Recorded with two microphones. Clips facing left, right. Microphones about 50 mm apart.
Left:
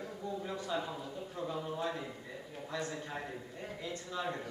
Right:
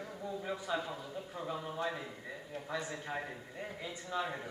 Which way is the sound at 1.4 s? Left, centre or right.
Centre.